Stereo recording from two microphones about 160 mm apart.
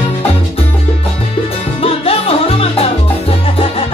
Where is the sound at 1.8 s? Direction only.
35° left (ahead or behind).